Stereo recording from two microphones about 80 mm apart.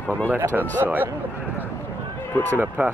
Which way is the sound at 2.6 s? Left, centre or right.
Right.